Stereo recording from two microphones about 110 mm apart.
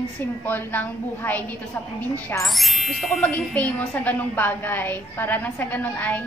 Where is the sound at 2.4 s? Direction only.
Centre (ahead or behind).